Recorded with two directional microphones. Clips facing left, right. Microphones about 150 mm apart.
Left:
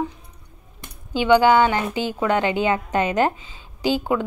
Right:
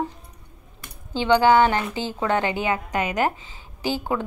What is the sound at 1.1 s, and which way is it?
A woman's voice, 15° left (ahead or behind).